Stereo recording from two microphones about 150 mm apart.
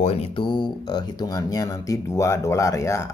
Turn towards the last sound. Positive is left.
turn(degrees=20)  # may be behind; listen again after turning